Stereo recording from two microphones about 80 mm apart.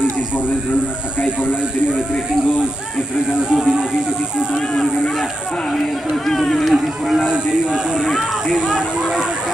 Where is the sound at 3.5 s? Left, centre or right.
Centre.